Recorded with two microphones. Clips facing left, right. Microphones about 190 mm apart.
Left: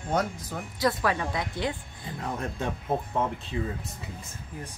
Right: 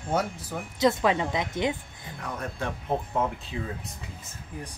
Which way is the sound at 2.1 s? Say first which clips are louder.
Left 1 dB; 25° left (ahead or behind).